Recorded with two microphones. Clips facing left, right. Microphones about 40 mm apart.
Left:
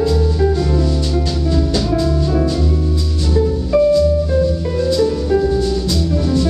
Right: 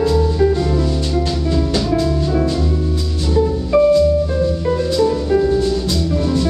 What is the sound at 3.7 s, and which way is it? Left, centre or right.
Music, centre.